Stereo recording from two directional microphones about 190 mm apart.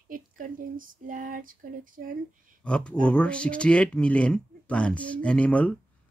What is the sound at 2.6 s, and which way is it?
Speech, 5° left (ahead or behind).